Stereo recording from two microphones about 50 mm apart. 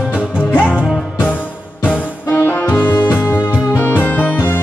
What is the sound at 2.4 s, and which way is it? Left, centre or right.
Music, left.